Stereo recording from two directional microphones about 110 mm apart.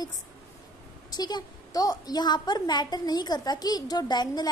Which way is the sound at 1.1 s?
35° left (ahead or behind).